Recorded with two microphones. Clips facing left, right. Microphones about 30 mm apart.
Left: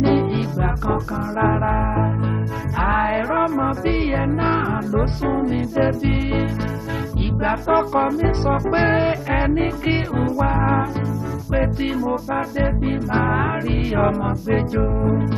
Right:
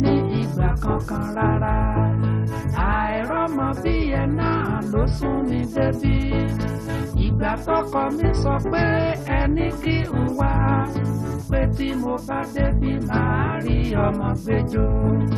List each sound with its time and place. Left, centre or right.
0.0 s music: centre
7.4 s music: centre